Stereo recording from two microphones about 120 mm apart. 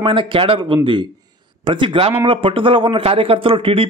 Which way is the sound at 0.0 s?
45° right (ahead or behind).